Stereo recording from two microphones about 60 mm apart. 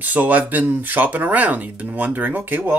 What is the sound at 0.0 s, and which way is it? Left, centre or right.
Speech, right.